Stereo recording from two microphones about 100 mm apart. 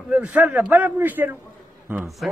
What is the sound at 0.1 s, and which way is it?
A man's voice, 15° right (ahead or behind).